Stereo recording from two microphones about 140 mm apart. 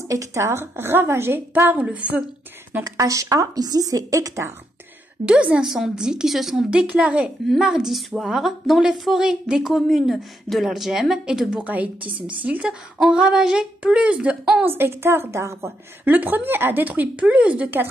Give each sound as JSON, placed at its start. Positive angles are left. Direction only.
{"t": 0.1, "sound": "a woman's voice", "side_deg": -20}
{"t": 2.8, "sound": "a woman's voice", "side_deg": -25}
{"t": 5.2, "sound": "a woman's voice", "side_deg": -5}